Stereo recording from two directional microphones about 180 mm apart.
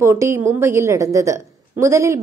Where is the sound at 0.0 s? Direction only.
15° right (ahead or behind).